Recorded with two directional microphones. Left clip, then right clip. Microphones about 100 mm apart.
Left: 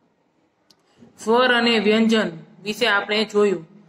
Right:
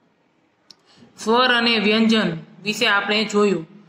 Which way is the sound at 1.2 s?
35° right (ahead or behind).